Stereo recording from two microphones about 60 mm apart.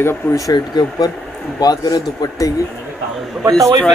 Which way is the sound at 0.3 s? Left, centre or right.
Left.